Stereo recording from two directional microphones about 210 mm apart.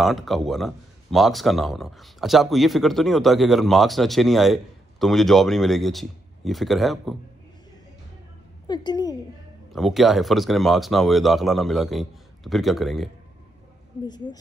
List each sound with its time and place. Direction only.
0.0 s speech: centre (ahead or behind)
8.6 s a woman's voice: 20° left (ahead or behind)
9.7 s speech: centre (ahead or behind)
14.0 s a woman's voice: 20° left (ahead or behind)